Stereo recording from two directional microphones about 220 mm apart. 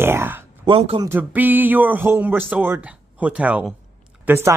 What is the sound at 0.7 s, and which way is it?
Speech, 25° right (ahead or behind).